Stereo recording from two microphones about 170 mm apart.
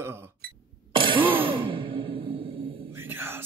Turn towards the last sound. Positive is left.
turn(degrees=-15)  # may be behind; listen again after turning